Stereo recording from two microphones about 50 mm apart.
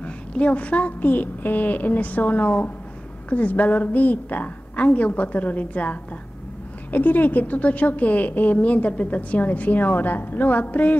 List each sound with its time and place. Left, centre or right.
0.3 s a woman's voice: left